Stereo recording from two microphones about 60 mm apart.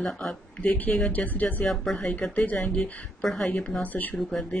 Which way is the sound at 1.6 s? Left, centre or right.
Centre.